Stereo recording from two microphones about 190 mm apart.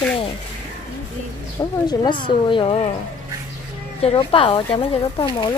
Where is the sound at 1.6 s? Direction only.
20° left (ahead or behind).